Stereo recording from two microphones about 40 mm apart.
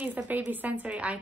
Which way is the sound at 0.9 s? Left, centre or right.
Right.